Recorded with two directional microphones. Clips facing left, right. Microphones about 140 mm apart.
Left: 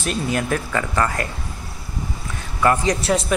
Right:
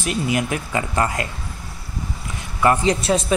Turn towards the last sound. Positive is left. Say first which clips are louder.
# right 1 dB
turn(degrees=-20)  # may be behind; listen again after turning